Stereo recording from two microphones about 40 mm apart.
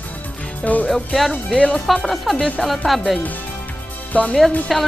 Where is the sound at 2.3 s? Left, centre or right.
Left.